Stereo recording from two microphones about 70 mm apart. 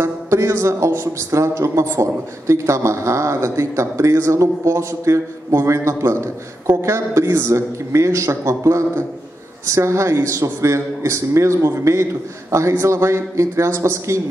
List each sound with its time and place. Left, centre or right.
0.0 s a man's voice: right